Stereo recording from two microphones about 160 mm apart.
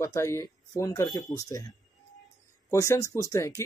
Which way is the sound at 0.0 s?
20° left (ahead or behind).